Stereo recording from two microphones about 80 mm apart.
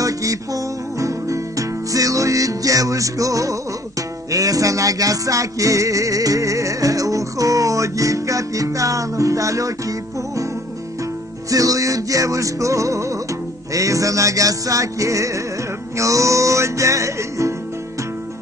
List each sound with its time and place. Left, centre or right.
0.0 s music: right
11.5 s music: right